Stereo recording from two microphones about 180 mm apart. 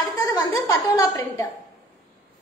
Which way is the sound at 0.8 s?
15° left (ahead or behind).